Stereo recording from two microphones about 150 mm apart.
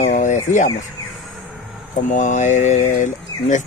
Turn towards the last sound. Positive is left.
turn(degrees=55)  # may be behind; listen again after turning